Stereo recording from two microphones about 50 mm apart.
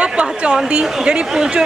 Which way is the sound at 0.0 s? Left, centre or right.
Right.